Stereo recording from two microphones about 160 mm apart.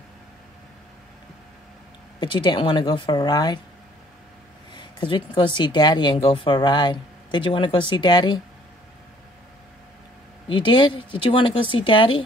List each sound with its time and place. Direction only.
2.1 s speech: 30° left (ahead or behind)
4.7 s speech: 30° left (ahead or behind)
10.5 s speech: 30° left (ahead or behind)